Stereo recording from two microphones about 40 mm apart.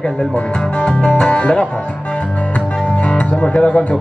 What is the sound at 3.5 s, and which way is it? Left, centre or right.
Music, left.